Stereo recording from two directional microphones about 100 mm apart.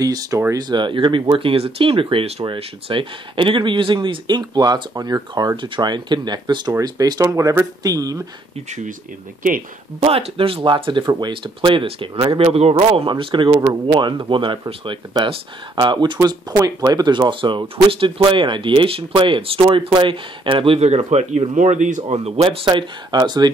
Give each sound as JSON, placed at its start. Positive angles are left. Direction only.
{"t": 0.0, "sound": "speech", "side_deg": -35}
{"t": 2.4, "sound": "speech", "side_deg": -60}
{"t": 9.9, "sound": "speech", "side_deg": -85}
{"t": 13.1, "sound": "speech", "side_deg": -55}
{"t": 13.5, "sound": "speech", "side_deg": -35}
{"t": 13.9, "sound": "speech", "side_deg": -50}
{"t": 22.7, "sound": "speech", "side_deg": -45}